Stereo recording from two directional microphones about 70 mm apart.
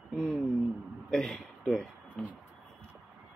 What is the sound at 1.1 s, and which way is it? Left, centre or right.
Speech, centre.